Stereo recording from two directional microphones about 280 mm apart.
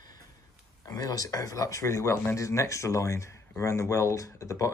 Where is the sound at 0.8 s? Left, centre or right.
Centre.